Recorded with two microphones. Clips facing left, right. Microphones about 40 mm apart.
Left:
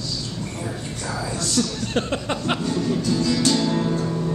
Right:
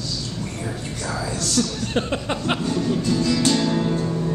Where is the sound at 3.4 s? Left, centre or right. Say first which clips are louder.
Right 1 dB; centre.